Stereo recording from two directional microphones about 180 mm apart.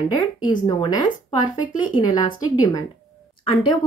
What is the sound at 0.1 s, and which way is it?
Speech, 25° left (ahead or behind).